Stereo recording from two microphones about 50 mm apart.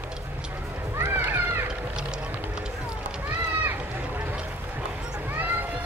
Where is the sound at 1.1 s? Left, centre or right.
Right.